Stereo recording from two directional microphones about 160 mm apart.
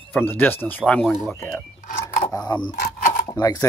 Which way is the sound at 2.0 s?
20° left (ahead or behind).